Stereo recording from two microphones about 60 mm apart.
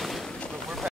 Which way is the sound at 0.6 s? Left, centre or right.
Centre.